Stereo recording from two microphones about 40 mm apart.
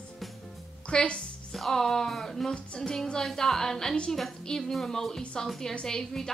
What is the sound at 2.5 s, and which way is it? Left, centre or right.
Speech, left.